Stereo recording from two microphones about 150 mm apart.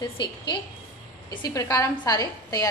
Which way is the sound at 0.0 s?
30° left (ahead or behind).